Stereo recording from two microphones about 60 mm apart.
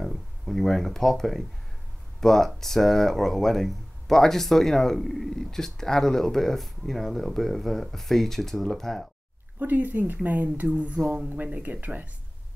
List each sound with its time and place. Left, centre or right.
0.0 s speech: centre
9.6 s speech: right